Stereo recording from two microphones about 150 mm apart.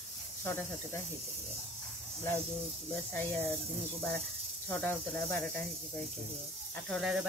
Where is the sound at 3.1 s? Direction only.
10° left (ahead or behind).